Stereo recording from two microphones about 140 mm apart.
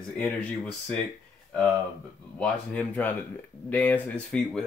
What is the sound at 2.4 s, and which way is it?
Speech, 10° left (ahead or behind).